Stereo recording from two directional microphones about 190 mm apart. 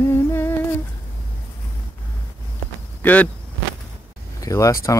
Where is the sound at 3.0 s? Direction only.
10° left (ahead or behind).